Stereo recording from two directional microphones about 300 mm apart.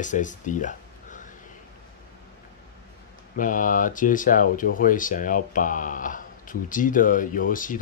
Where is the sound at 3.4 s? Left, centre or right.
Left.